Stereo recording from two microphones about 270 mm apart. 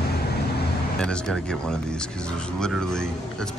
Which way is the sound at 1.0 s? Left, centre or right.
Centre.